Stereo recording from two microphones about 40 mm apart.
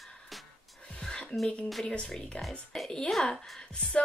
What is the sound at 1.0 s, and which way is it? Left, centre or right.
Music, left.